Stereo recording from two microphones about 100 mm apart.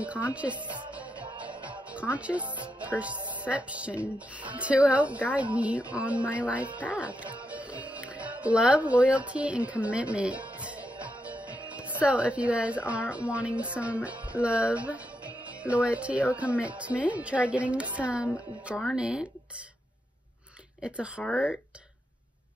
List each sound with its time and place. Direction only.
0.0 s a woman's voice: 15° right (ahead or behind)
0.6 s music: 50° right (ahead or behind)
0.9 s music: 15° right (ahead or behind)
2.6 s a woman's voice: 15° right (ahead or behind)
7.4 s music: 15° right (ahead or behind)
11.7 s a woman's voice: 15° right (ahead or behind)
20.8 s a woman's voice: 10° right (ahead or behind)
21.2 s speech: 15° left (ahead or behind)